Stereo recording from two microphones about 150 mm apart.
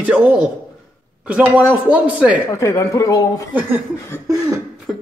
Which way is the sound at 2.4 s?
20° left (ahead or behind).